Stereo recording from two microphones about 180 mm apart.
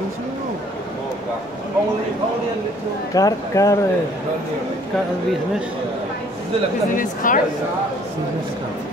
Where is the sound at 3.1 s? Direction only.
20° left (ahead or behind).